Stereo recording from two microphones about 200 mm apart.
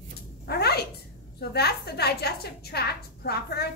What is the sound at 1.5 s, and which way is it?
A woman's voice, 55° left (ahead or behind).